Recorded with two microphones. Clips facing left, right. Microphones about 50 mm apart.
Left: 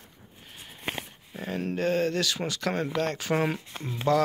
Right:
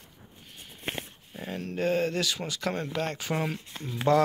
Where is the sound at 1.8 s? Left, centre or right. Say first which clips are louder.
Even; centre.